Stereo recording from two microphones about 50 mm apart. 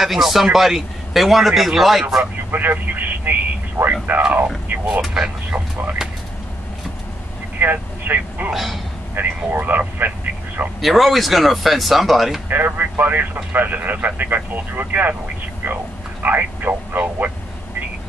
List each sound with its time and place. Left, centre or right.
0.0 s a man's voice: centre
2.5 s speech: right
6.0 s a sound: centre
7.5 s speech: right
8.5 s a man's voice: centre
9.2 s speech: right
10.8 s a man's voice: centre
12.4 s speech: right